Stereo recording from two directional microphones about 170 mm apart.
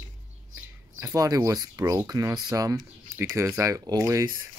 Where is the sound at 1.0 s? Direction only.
20° right (ahead or behind).